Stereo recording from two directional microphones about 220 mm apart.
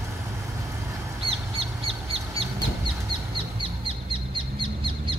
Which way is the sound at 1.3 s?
25° right (ahead or behind).